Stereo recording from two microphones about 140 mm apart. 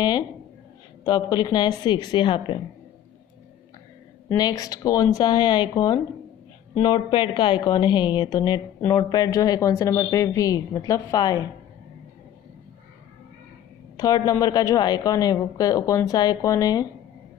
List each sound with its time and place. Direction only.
1.0 s a woman's voice: 30° left (ahead or behind)
4.3 s a woman's voice: 30° left (ahead or behind)
13.9 s a woman's voice: 25° left (ahead or behind)